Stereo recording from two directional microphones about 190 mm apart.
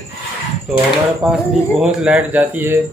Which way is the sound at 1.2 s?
Centre (ahead or behind).